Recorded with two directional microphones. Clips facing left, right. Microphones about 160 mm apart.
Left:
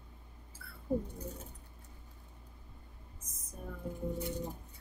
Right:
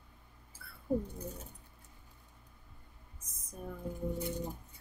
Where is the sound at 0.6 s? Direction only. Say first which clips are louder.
Left 1 dB; 10° right (ahead or behind).